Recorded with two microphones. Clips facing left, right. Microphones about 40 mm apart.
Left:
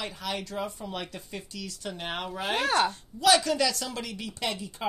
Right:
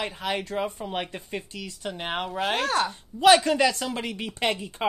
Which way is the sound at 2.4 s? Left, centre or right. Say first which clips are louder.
Even; centre.